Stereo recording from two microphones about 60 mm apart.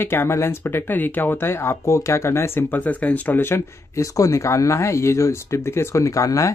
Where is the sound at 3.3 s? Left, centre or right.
Left.